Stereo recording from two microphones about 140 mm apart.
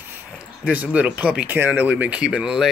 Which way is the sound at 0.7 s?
10° right (ahead or behind).